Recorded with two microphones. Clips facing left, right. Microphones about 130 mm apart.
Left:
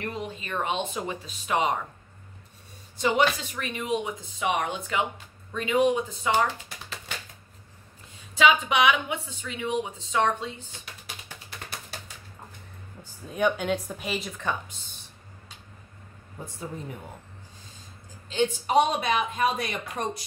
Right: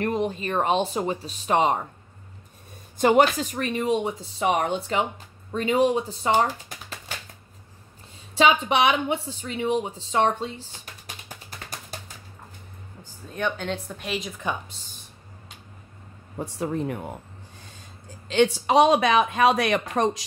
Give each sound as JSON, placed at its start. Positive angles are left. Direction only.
{"t": 0.0, "sound": "a woman's voice", "side_deg": -45}
{"t": 3.0, "sound": "a woman's voice", "side_deg": -50}
{"t": 8.4, "sound": "a woman's voice", "side_deg": -30}
{"t": 13.3, "sound": "speech", "side_deg": 10}
{"t": 16.3, "sound": "speech", "side_deg": -75}
{"t": 18.3, "sound": "speech", "side_deg": -85}